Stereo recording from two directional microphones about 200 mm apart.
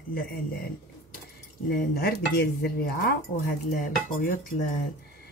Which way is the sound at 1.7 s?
50° left (ahead or behind).